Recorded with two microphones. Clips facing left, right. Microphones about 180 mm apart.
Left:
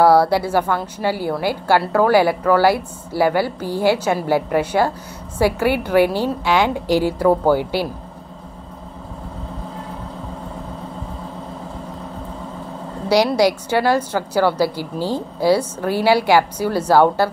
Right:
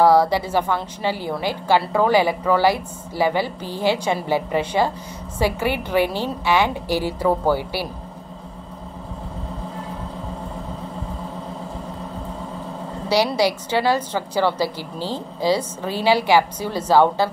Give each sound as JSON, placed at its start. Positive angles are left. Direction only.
{"t": 0.0, "sound": "a woman's voice", "side_deg": 10}
{"t": 2.2, "sound": "speech", "side_deg": -15}
{"t": 2.6, "sound": "a woman's voice", "side_deg": 10}
{"t": 13.1, "sound": "a woman's voice", "side_deg": 15}